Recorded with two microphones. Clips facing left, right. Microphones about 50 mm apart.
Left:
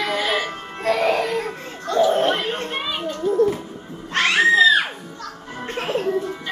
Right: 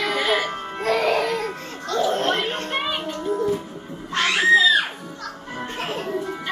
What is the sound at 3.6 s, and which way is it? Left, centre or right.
Music, centre.